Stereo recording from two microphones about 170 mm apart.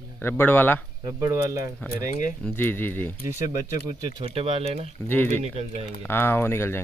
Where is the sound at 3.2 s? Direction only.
20° right (ahead or behind).